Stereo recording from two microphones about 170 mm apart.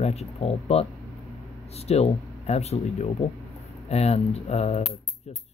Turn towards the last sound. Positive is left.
turn(degrees=40)  # may be behind; listen again after turning